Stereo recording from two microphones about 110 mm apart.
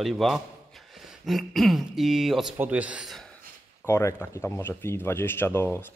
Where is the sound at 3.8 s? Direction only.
25° left (ahead or behind).